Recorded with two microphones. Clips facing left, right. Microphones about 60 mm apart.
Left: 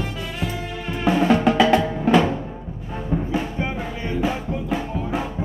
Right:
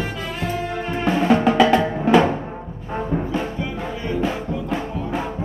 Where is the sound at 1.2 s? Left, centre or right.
Centre.